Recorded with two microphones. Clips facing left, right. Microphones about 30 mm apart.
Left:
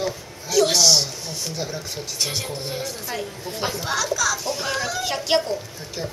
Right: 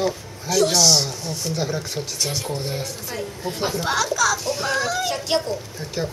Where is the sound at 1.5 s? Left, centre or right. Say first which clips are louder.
Right 4 dB; centre.